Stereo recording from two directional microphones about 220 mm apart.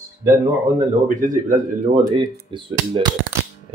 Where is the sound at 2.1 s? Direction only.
20° right (ahead or behind).